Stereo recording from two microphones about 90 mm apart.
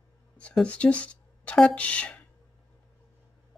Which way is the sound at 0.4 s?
15° left (ahead or behind).